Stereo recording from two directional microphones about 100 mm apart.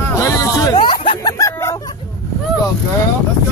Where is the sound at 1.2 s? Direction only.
30° left (ahead or behind).